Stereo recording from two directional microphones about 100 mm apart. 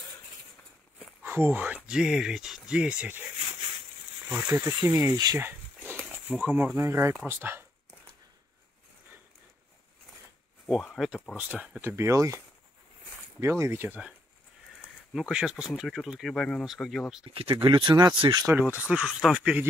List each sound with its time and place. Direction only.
1.2 s speech: 20° right (ahead or behind)
4.3 s speech: 20° right (ahead or behind)
5.0 s speech: 35° right (ahead or behind)
6.4 s speech: 15° right (ahead or behind)
11.0 s speech: 5° right (ahead or behind)
11.3 s speech: 15° right (ahead or behind)
11.8 s speech: 25° right (ahead or behind)
13.4 s speech: 25° right (ahead or behind)
15.1 s speech: 5° right (ahead or behind)
17.3 s speech: 65° right (ahead or behind); by 18.1 s 50° right (ahead or behind)
18.5 s speech: 20° right (ahead or behind)